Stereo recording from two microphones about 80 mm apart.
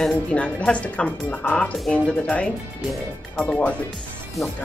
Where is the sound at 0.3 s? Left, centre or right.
Centre.